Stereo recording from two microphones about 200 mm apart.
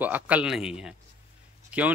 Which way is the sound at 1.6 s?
5° right (ahead or behind).